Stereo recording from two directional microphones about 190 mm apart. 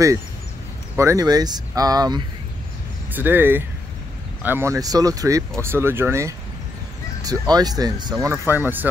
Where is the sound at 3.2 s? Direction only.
10° right (ahead or behind).